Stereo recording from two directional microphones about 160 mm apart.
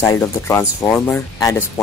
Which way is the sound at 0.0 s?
20° left (ahead or behind).